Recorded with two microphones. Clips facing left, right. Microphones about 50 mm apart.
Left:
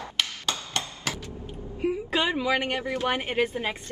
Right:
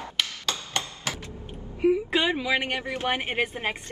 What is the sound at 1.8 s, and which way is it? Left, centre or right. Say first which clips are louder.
Speech: right 3 dB; right.